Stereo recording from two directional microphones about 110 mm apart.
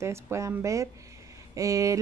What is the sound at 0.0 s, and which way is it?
Speech, 25° right (ahead or behind).